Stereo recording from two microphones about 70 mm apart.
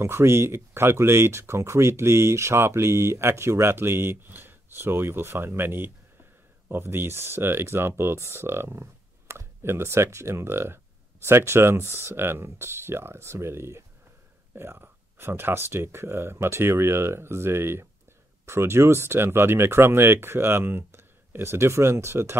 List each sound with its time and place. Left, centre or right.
0.0 s speech: right